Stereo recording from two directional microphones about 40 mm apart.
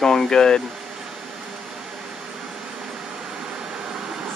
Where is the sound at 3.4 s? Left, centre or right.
Right.